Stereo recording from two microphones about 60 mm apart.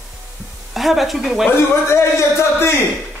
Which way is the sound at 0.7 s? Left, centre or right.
Centre.